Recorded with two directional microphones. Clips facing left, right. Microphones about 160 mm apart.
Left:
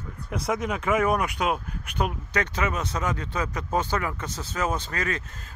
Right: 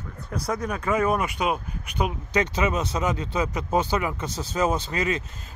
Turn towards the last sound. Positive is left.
turn(degrees=-20)  # may be behind; listen again after turning